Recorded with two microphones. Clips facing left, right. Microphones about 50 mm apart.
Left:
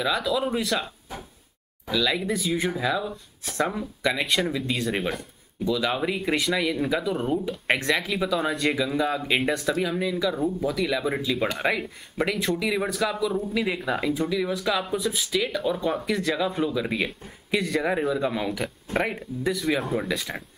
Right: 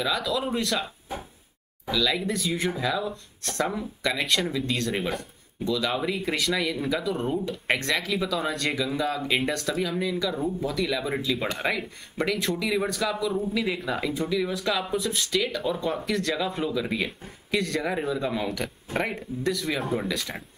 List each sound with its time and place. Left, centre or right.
0.0 s speech: centre
1.9 s speech: centre